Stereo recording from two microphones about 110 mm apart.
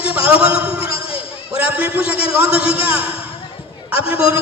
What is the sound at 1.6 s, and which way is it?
Speech, 15° right (ahead or behind).